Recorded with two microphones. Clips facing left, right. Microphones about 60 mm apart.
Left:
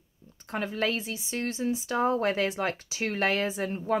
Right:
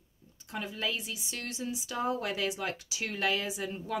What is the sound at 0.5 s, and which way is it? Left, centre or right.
Speech, left.